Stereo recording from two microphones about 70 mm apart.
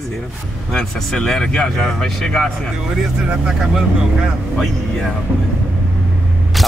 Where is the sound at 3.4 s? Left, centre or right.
Centre.